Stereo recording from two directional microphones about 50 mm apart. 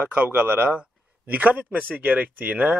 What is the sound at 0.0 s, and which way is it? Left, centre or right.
Speech, right.